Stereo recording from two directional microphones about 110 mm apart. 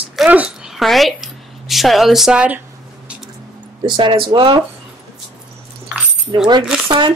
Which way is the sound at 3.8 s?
45° right (ahead or behind).